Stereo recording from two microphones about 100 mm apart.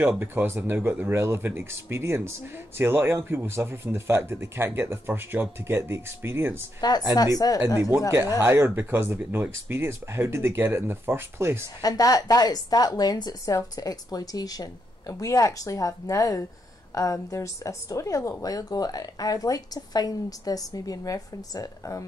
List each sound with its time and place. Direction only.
0.2 s speech: 20° right (ahead or behind)
6.8 s a woman's voice: 40° left (ahead or behind)
8.4 s speech: 25° right (ahead or behind)
11.8 s a woman's voice: 35° left (ahead or behind)